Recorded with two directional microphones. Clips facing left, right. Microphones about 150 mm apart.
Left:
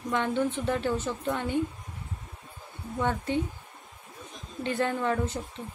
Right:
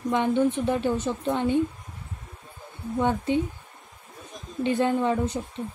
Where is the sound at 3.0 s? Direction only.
15° right (ahead or behind).